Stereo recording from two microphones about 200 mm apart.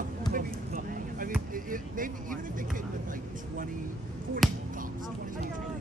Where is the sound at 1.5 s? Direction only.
45° right (ahead or behind).